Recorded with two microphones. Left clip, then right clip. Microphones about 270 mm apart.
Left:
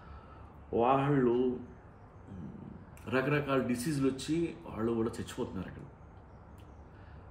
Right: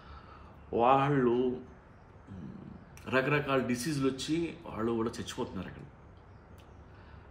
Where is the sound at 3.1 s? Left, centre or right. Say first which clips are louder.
Right 2 dB; centre.